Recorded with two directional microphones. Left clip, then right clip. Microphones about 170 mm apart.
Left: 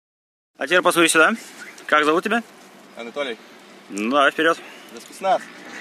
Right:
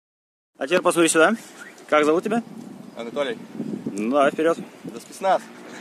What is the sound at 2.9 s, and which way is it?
Speech, 20° right (ahead or behind).